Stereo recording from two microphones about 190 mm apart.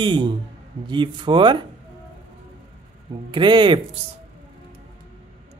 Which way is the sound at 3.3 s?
25° right (ahead or behind).